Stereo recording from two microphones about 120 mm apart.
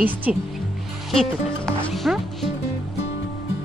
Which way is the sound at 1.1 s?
Centre (ahead or behind).